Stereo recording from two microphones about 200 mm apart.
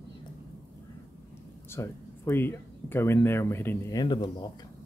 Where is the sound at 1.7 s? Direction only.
10° left (ahead or behind).